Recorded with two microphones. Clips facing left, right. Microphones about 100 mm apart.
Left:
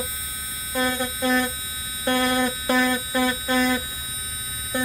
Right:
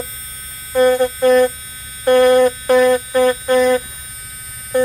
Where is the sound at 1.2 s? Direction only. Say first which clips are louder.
Right 10 dB; 45° right (ahead or behind).